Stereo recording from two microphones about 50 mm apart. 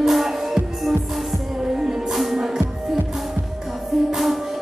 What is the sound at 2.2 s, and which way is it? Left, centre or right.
Music, centre.